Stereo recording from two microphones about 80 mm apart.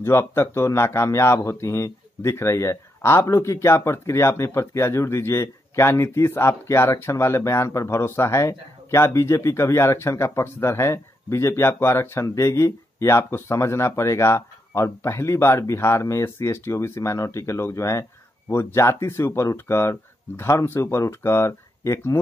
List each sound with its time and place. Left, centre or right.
0.0 s speech: left